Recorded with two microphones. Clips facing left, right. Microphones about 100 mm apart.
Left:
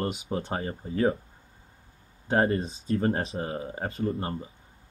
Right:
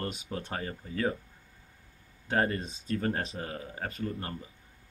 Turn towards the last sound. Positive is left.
turn(degrees=25)  # may be behind; listen again after turning